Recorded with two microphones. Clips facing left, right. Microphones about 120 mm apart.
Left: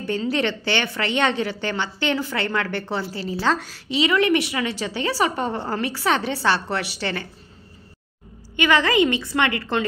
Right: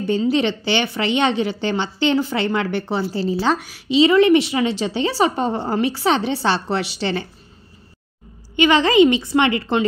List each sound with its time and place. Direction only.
0.0 s a woman's voice: 20° right (ahead or behind)
4.0 s a woman's voice: 30° right (ahead or behind)
8.5 s a woman's voice: 25° right (ahead or behind)